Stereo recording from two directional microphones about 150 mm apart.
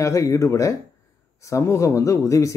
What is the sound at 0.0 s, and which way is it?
Speech, 20° left (ahead or behind).